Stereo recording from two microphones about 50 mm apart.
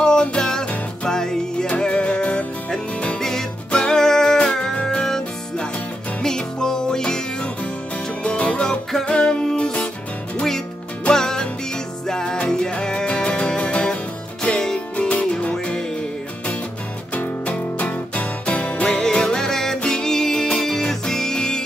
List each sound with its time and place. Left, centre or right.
0.0 s music: centre
3.2 s music: centre
8.2 s music: left
11.1 s music: centre
15.0 s music: left
15.5 s music: centre
17.1 s music: left
18.9 s music: centre